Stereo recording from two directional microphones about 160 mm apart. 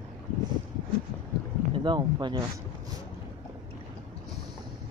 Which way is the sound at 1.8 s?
30° right (ahead or behind).